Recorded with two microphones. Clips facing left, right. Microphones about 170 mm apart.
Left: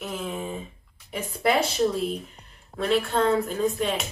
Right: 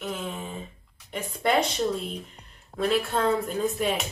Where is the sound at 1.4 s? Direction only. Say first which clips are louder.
Left 1 dB; 5° left (ahead or behind).